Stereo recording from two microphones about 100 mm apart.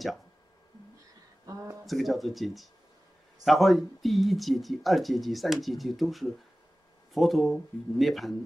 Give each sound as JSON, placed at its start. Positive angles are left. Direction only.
{"t": 1.4, "sound": "speech", "side_deg": -30}
{"t": 1.9, "sound": "speech", "side_deg": 0}